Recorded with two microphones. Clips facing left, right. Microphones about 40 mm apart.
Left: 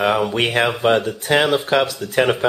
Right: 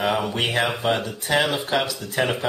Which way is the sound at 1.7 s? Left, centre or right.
Left.